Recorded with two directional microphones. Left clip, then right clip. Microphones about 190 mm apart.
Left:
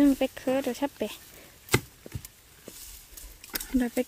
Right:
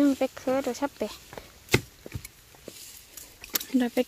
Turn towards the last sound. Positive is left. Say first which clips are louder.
# right 2 dB
turn(degrees=5)  # may be behind; listen again after turning